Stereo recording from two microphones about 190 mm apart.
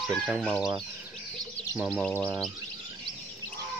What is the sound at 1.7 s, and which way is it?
Speech, 5° right (ahead or behind).